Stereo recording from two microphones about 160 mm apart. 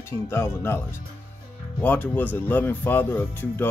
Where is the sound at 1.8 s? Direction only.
10° left (ahead or behind).